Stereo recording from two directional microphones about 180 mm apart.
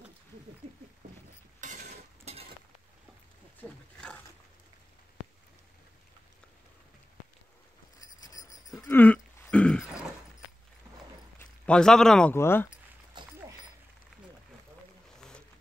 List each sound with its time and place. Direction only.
1.6 s mechanisms: 45° right (ahead or behind)
3.5 s pig: 5° left (ahead or behind)
8.2 s a sound: 20° left (ahead or behind)
8.8 s throat clearing: 10° left (ahead or behind)
11.3 s speech: 5° left (ahead or behind)
13.2 s a sound: 25° right (ahead or behind)
15.1 s boat: 5° left (ahead or behind)